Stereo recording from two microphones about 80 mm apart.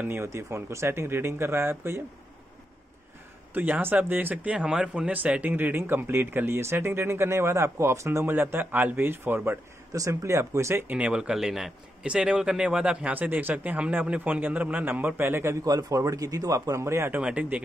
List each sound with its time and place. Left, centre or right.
0.0 s speech: right
3.5 s speech: right
8.3 s speech: right
9.9 s speech: right
10.9 s a man's voice: centre
15.6 s a man's voice: right
17.1 s a man's voice: centre